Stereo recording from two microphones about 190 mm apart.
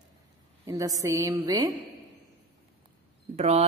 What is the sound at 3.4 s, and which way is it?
Speech, 35° right (ahead or behind).